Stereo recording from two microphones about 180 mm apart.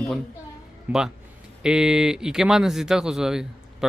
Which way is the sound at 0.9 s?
5° right (ahead or behind).